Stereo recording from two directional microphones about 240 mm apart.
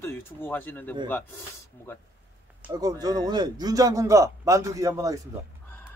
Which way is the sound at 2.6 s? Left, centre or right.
Centre.